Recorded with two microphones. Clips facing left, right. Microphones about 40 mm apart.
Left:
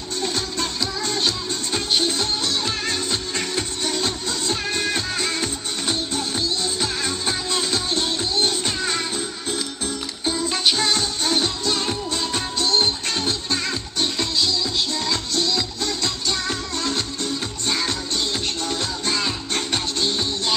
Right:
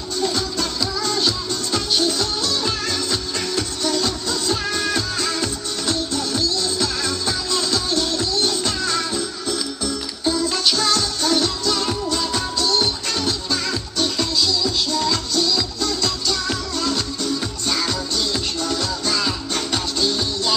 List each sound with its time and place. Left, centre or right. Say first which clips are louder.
0.2 s music: right 3 dB; left